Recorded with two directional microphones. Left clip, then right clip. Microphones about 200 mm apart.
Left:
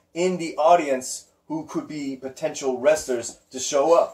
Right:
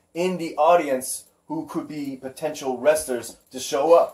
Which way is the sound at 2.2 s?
15° right (ahead or behind).